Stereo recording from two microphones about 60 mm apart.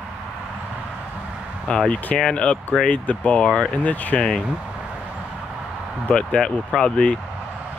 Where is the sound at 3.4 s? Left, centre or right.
Centre.